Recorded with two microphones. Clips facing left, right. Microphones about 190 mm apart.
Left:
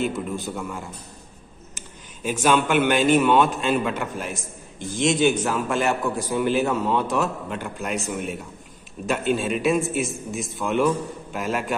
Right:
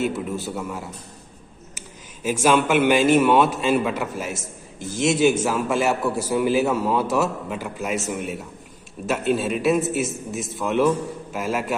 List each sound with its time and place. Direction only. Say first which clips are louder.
0.0 s speech: right 1 dB; 5° right (ahead or behind)